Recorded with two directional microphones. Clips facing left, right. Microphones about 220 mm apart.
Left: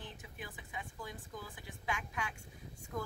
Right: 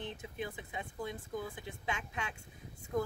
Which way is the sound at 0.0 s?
25° right (ahead or behind).